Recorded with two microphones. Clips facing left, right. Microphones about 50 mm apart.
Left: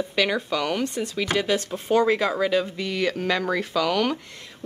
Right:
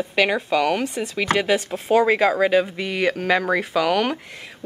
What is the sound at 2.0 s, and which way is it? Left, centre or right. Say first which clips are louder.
Speech: right 4 dB; centre.